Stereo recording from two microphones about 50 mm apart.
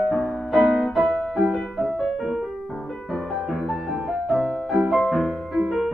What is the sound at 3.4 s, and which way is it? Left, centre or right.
Music, centre.